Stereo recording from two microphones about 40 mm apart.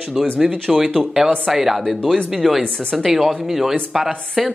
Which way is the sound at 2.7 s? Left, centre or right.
Left.